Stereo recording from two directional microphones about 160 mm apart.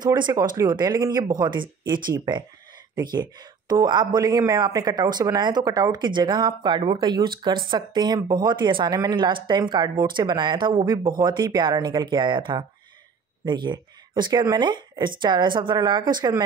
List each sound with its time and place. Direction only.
0.6 s speech: 25° right (ahead or behind)